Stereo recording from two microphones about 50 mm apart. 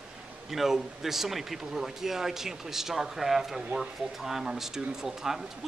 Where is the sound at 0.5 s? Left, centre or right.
Centre.